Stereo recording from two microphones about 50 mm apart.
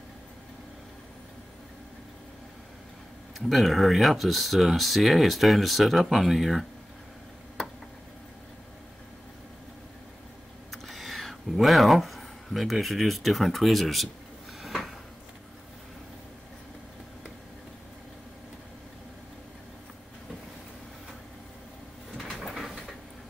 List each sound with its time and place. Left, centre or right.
3.3 s speech: centre
10.7 s speech: centre
14.6 s drawer open or close: centre
22.4 s a sound: centre